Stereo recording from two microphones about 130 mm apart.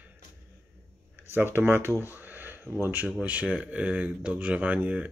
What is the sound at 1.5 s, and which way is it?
Speech, 20° right (ahead or behind).